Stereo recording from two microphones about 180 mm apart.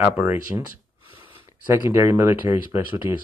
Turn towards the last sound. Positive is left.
turn(degrees=-15)  # may be behind; listen again after turning